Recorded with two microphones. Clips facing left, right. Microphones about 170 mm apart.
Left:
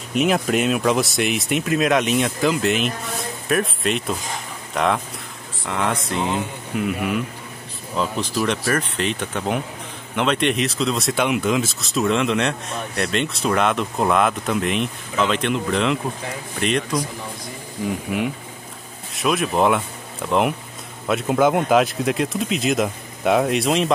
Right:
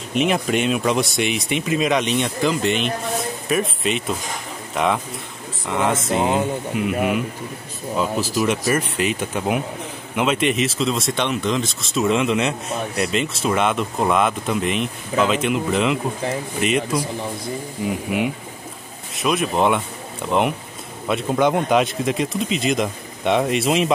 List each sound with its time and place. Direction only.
0.1 s speech: centre (ahead or behind)
6.1 s speech: 45° right (ahead or behind)
6.7 s speech: centre (ahead or behind)
8.0 s speech: 5° right (ahead or behind)